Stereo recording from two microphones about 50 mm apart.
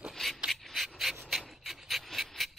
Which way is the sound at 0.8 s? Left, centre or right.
Centre.